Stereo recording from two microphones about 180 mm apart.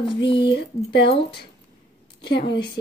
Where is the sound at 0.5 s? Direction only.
75° left (ahead or behind).